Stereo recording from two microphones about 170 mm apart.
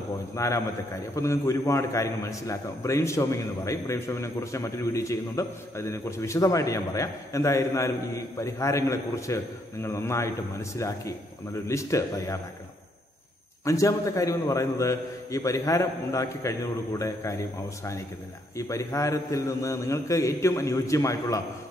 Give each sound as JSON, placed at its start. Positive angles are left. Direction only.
{"t": 0.4, "sound": "a man's voice", "side_deg": 20}
{"t": 11.6, "sound": "a man's voice", "side_deg": 20}
{"t": 13.7, "sound": "a man's voice", "side_deg": 20}